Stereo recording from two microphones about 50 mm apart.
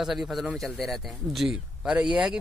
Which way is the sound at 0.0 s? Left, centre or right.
Centre.